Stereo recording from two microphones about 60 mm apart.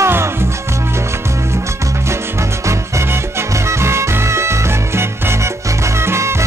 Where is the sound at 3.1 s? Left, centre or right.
Right.